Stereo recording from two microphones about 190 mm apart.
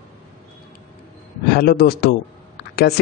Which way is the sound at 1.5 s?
55° left (ahead or behind).